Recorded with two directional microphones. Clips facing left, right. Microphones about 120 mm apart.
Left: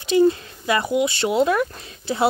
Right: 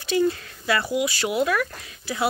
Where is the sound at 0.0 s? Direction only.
20° left (ahead or behind).